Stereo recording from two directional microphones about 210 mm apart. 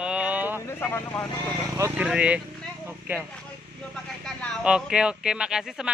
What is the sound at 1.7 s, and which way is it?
Speech, 15° right (ahead or behind).